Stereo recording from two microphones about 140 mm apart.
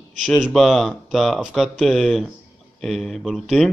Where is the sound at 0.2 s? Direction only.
5° left (ahead or behind).